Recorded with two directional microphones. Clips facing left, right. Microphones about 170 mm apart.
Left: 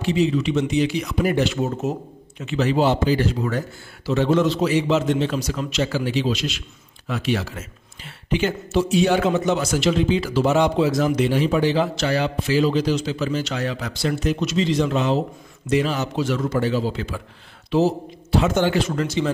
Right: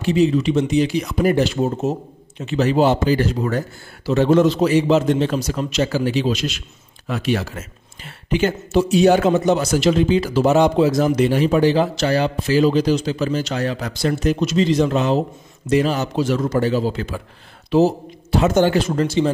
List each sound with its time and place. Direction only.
0.0 s speech: 45° right (ahead or behind); by 2.5 s 30° right (ahead or behind)
2.5 s a man's voice: 45° right (ahead or behind)
18.3 s speech: 45° right (ahead or behind)